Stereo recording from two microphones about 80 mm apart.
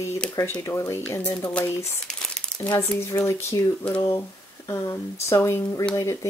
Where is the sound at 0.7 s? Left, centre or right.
Left.